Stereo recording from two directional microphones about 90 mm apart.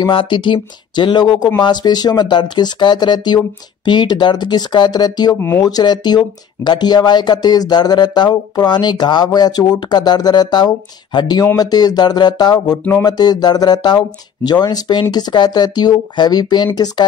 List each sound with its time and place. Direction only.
0.0 s speech: 65° left (ahead or behind)